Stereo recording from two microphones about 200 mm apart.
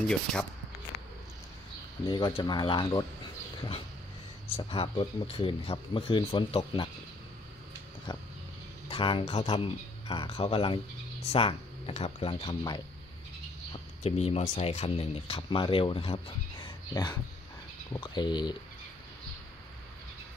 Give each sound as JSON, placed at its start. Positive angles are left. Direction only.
{"t": 0.0, "sound": "speech", "side_deg": 5}
{"t": 2.0, "sound": "speech", "side_deg": 20}
{"t": 4.6, "sound": "speech", "side_deg": 25}
{"t": 8.8, "sound": "speech", "side_deg": 25}
{"t": 14.0, "sound": "speech", "side_deg": 30}